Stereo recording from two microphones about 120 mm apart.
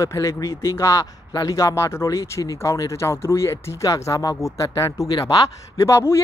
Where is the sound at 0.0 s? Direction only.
25° left (ahead or behind).